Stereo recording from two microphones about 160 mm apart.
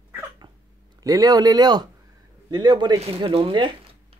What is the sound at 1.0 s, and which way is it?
Speech, 20° right (ahead or behind).